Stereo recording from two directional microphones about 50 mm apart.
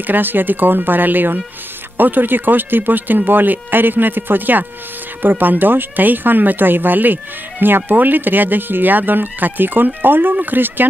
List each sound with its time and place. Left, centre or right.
0.0 s speech: right